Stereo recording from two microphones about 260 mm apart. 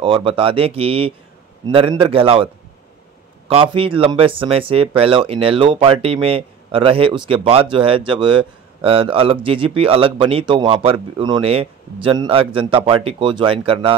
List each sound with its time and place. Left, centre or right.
0.0 s speech: centre
3.7 s speech: centre